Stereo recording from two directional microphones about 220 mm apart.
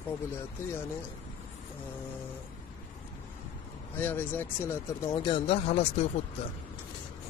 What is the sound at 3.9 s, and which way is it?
Speech, 10° left (ahead or behind).